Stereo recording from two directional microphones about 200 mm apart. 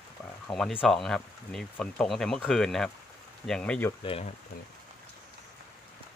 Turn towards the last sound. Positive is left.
turn(degrees=30)  # may be behind; listen again after turning